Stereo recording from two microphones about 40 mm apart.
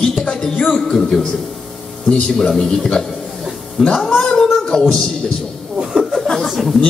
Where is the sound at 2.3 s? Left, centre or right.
Centre.